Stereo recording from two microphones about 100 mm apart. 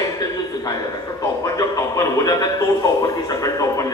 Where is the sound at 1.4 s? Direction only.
35° left (ahead or behind).